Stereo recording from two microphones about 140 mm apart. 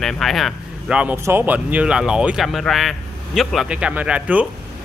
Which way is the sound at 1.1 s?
15° right (ahead or behind).